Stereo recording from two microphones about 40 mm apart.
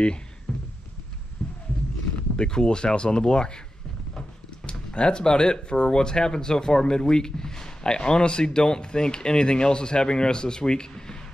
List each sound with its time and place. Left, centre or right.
0.5 s a sound: centre
1.4 s roaring cats: left
2.3 s speech: left
4.6 s speech: left